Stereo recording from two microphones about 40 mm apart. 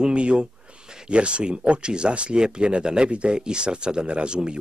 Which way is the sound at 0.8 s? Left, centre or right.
Centre.